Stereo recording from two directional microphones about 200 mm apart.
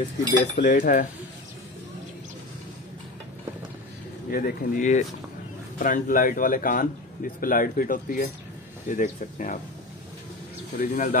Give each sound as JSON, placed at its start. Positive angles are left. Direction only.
{"t": 0.6, "sound": "speech", "side_deg": 40}
{"t": 4.3, "sound": "speech", "side_deg": 45}
{"t": 10.8, "sound": "speech", "side_deg": 45}